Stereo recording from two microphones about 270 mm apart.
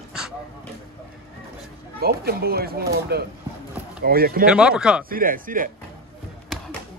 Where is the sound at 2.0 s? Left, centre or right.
Right.